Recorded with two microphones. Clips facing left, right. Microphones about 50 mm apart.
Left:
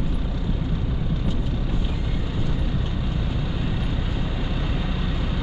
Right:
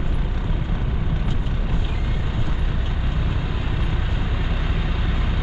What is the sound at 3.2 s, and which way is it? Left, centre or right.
Vehicle, right.